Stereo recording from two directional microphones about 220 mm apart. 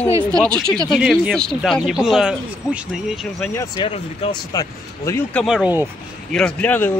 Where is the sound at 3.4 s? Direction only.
15° left (ahead or behind).